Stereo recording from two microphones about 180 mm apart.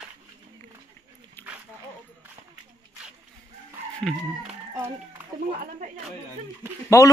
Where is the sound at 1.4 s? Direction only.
10° left (ahead or behind).